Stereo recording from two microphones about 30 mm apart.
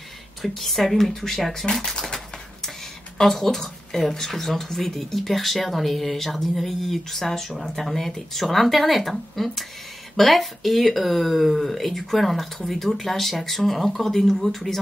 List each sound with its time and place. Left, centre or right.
0.4 s speech: centre
1.5 s speech: centre
3.2 s speech: centre